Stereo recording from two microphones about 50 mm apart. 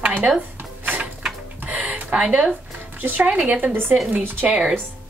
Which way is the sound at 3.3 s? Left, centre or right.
Right.